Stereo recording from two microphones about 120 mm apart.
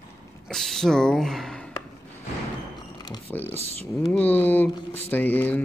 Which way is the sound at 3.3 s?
15° left (ahead or behind).